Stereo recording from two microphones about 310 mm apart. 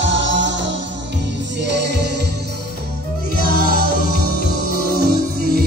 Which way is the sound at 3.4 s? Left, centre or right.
Right.